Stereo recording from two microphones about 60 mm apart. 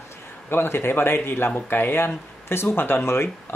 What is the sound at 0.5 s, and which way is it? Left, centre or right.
Speech, left.